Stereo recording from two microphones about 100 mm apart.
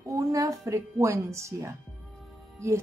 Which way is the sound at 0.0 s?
30° right (ahead or behind).